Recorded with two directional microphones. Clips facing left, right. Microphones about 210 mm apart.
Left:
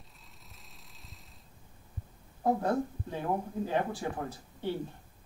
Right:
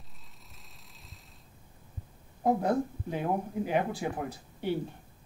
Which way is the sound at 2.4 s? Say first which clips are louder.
Right 2 dB; 15° right (ahead or behind).